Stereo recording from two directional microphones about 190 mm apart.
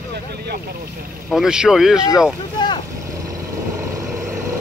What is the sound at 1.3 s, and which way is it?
Speech, 5° right (ahead or behind).